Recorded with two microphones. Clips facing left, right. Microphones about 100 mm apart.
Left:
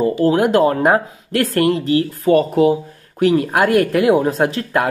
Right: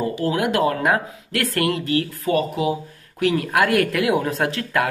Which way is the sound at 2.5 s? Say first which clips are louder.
Left 9 dB; 45° left (ahead or behind).